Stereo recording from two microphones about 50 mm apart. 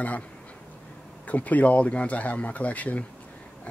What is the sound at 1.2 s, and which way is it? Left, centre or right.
Speech, left.